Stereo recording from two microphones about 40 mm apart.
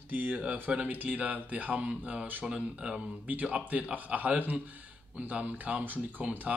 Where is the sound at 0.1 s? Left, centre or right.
Right.